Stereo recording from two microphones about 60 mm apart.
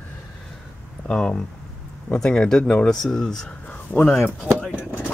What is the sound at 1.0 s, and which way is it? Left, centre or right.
Speech, centre.